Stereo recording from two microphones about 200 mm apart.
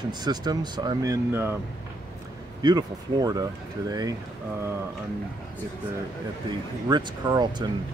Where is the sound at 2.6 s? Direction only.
20° right (ahead or behind).